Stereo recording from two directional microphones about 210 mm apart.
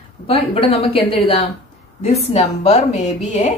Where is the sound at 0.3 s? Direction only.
25° left (ahead or behind).